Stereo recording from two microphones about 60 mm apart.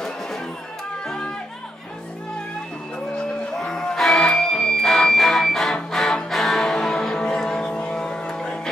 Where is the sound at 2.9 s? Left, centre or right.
Centre.